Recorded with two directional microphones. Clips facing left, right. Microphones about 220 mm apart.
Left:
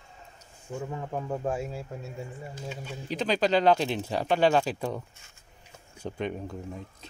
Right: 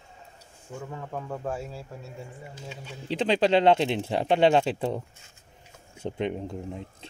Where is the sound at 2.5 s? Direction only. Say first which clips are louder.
Left 3 dB; 50° left (ahead or behind).